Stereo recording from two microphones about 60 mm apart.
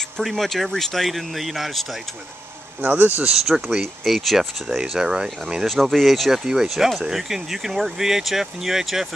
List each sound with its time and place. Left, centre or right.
0.2 s speech: centre
2.8 s speech: right
3.4 s speech: centre
5.7 s speech: centre